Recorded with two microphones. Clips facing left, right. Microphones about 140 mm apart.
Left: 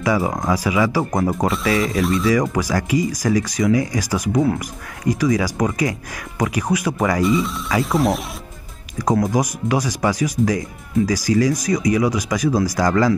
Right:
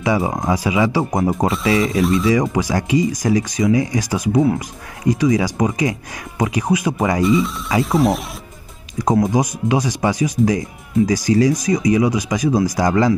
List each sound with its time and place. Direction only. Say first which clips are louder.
0.0 s speech: right 1 dB; 20° right (ahead or behind)
2.0 s speech: right 2 dB; centre (ahead or behind)
2.5 s speech: right 2 dB; 20° right (ahead or behind)
7.2 s speech: right 2 dB; centre (ahead or behind)
8.9 s speech: right 2 dB; 20° right (ahead or behind)